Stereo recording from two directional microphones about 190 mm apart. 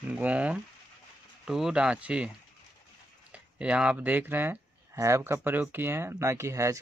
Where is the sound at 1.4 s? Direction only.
5° right (ahead or behind).